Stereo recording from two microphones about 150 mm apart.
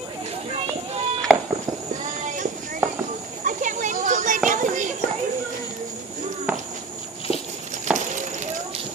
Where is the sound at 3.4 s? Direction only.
60° right (ahead or behind).